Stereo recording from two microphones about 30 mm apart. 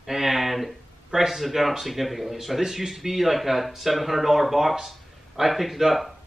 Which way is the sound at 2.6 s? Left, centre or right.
Centre.